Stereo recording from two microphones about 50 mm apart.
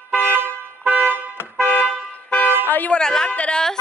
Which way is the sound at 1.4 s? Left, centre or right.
Left.